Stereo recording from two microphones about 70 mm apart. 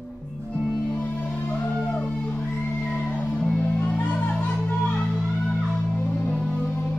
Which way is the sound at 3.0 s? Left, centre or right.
Centre.